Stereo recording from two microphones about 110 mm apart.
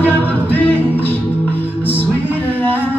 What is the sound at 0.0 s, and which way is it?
Music, 15° left (ahead or behind).